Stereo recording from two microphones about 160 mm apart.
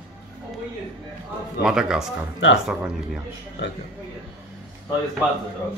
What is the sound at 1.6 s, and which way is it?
Speech, 5° right (ahead or behind).